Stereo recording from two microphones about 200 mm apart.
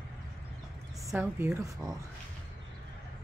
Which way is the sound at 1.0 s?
10° right (ahead or behind).